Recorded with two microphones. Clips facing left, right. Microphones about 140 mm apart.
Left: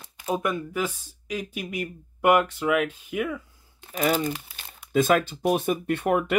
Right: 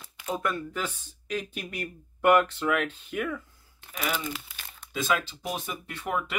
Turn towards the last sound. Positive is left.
turn(degrees=60)  # may be behind; listen again after turning